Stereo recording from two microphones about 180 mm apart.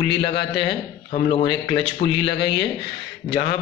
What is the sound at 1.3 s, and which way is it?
A man's voice, 70° left (ahead or behind).